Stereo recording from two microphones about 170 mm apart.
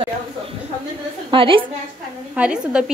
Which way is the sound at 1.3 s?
30° right (ahead or behind).